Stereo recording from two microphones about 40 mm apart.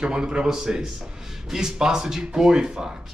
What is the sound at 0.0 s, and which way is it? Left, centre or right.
A man's voice, right.